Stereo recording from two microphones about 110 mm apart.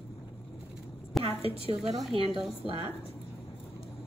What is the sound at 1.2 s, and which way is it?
A woman's voice, 65° right (ahead or behind).